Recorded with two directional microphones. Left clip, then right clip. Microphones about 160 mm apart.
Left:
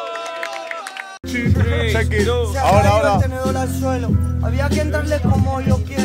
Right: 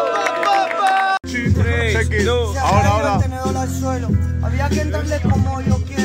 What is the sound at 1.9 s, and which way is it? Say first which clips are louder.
Speech: even; 90° left.